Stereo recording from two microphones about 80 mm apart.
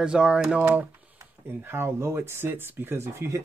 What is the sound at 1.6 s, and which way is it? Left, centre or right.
Speech, right.